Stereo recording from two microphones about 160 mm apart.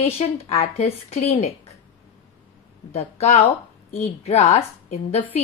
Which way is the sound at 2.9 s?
40° left (ahead or behind).